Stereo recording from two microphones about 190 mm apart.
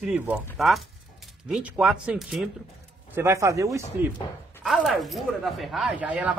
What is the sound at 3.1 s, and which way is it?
Speech, 15° right (ahead or behind).